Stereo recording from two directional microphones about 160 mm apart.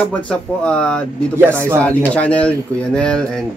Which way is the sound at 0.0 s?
5° left (ahead or behind).